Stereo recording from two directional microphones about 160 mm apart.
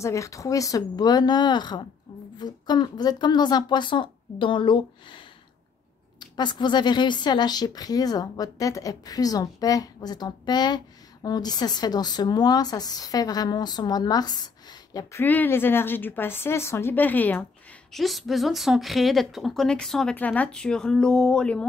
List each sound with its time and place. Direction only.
0.0 s a woman's voice: 20° left (ahead or behind)
15.2 s speech: 10° left (ahead or behind)
17.9 s a woman's voice: centre (ahead or behind)